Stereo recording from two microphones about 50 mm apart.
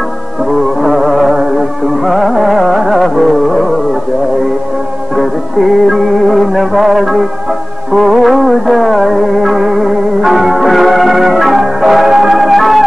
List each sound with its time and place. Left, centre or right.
0.5 s music: centre
5.1 s music: centre